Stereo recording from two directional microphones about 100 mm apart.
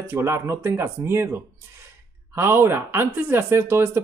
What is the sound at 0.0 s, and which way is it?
Speech, 25° right (ahead or behind).